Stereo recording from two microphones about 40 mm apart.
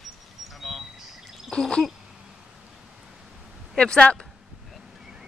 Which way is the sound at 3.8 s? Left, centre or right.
Left.